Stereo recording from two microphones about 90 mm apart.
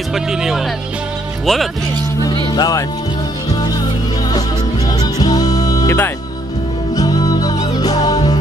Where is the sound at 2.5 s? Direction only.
50° left (ahead or behind).